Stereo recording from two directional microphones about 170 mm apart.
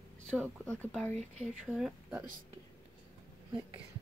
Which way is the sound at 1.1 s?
45° right (ahead or behind).